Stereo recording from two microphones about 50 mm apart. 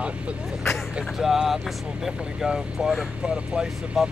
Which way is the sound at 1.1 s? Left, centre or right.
Centre.